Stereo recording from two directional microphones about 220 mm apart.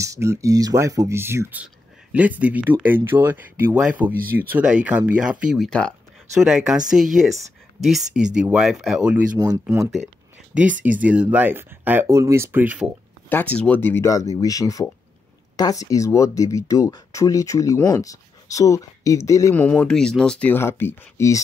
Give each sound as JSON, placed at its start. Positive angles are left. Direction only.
{"t": 0.0, "sound": "speech", "side_deg": -15}
{"t": 9.4, "sound": "speech", "side_deg": -15}
{"t": 13.3, "sound": "speech", "side_deg": 5}